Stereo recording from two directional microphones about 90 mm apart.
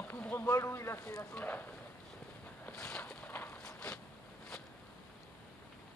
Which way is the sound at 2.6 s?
10° left (ahead or behind).